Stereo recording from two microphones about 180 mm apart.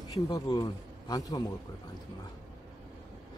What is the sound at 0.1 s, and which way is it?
Speech, 20° left (ahead or behind).